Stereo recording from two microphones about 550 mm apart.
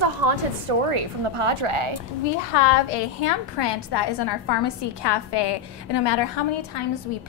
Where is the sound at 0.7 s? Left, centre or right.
Right.